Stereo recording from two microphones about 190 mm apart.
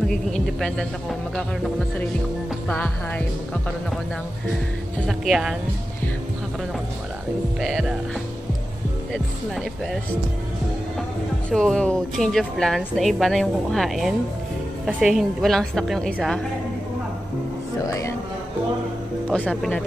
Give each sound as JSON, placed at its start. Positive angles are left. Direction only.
{"t": 0.1, "sound": "speech", "side_deg": 5}
{"t": 5.0, "sound": "speech", "side_deg": 0}
{"t": 7.6, "sound": "speech", "side_deg": 0}
{"t": 11.5, "sound": "speech", "side_deg": 5}
{"t": 17.8, "sound": "music", "side_deg": 15}
{"t": 19.3, "sound": "speech", "side_deg": 5}